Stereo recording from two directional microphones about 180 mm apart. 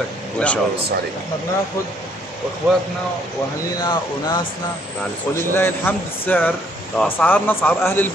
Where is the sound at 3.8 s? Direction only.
25° left (ahead or behind).